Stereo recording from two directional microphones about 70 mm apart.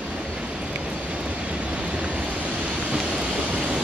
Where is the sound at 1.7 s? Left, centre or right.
Centre.